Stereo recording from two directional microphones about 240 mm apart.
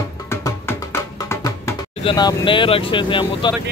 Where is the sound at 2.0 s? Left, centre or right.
Centre.